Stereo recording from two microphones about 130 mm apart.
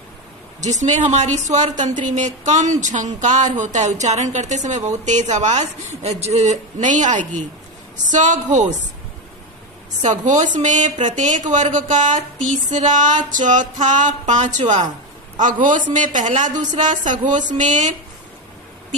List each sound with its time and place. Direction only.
0.6 s speech: 65° right (ahead or behind)
10.0 s speech: 70° right (ahead or behind)
15.9 s speech: 75° right (ahead or behind)